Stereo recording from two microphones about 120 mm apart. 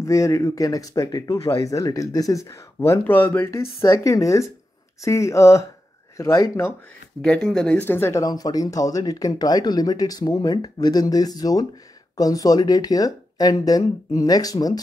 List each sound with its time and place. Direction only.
0.0 s speech: 25° left (ahead or behind)
7.5 s speech: 10° left (ahead or behind); by 14.8 s 30° left (ahead or behind)